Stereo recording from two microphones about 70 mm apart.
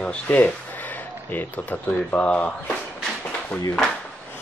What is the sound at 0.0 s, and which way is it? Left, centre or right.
Speech, centre.